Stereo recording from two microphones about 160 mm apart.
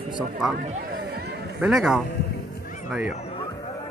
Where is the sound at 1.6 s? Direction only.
5° right (ahead or behind).